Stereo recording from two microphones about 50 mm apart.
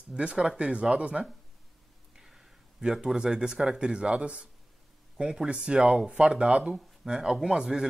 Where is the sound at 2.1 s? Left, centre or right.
Centre.